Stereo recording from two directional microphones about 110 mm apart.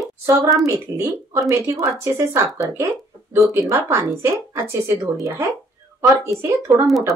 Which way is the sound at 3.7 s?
25° right (ahead or behind).